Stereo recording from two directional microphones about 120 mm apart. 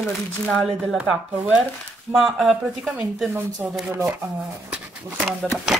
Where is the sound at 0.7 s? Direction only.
10° right (ahead or behind).